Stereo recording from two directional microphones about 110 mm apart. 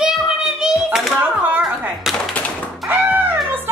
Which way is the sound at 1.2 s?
15° right (ahead or behind).